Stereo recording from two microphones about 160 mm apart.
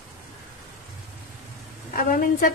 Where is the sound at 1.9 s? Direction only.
60° left (ahead or behind).